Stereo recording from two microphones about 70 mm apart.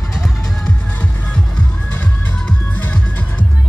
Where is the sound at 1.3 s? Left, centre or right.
Centre.